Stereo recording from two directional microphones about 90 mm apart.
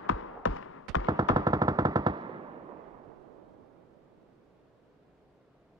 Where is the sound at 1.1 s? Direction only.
45° right (ahead or behind).